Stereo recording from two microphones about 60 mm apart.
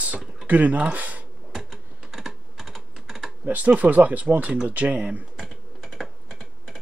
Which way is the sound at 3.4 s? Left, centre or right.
Right.